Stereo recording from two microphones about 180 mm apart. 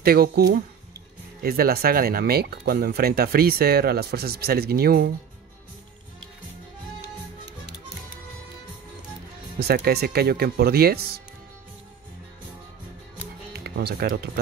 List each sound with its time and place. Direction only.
0.0 s speech: 60° right (ahead or behind)
9.6 s speech: 60° right (ahead or behind)
13.5 s speech: 65° right (ahead or behind)